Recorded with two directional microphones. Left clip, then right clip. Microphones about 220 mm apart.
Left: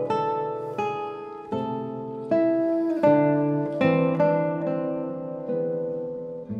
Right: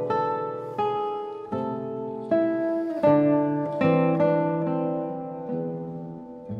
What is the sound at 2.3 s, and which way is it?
Music, 15° left (ahead or behind).